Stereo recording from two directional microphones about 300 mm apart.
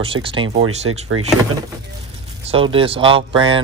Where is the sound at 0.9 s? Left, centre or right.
Right.